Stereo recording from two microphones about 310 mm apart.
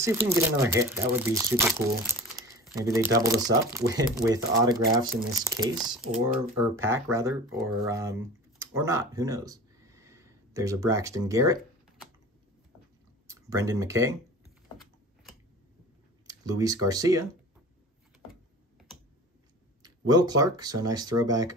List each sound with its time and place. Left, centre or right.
0.0 s speech: centre
5.8 s speech: centre
7.1 s speech: centre
13.3 s speech: centre
16.3 s speech: centre
19.8 s speech: centre